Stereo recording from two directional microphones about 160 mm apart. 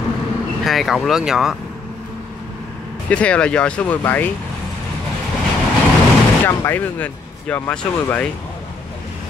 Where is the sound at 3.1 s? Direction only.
5° left (ahead or behind).